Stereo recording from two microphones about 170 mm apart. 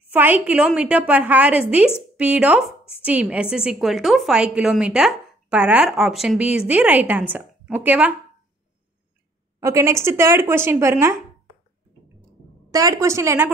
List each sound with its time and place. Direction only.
0.1 s a woman's voice: 10° right (ahead or behind)
9.6 s a woman's voice: 15° right (ahead or behind)
12.7 s a woman's voice: 20° right (ahead or behind)